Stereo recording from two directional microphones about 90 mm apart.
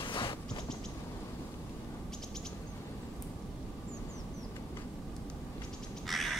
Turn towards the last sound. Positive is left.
turn(degrees=0)  # may be behind; listen again after turning